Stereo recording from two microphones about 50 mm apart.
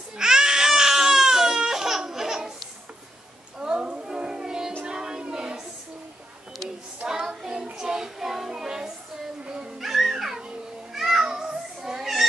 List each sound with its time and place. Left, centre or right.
0.2 s baby cry: centre
3.5 s music: centre
4.8 s child singing: centre
7.1 s child singing: centre
9.8 s music: centre
11.0 s a sound: centre
11.2 s child singing: centre